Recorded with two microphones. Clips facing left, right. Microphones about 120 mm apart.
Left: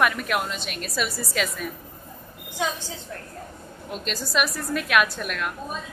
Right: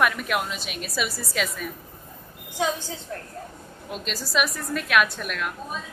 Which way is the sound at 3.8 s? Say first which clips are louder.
Left 1 dB; centre (ahead or behind).